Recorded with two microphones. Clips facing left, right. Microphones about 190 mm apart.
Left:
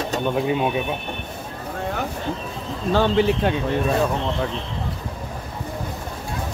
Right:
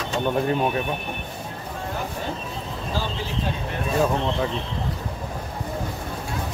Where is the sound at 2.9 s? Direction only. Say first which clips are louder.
Left 13 dB; 65° left (ahead or behind).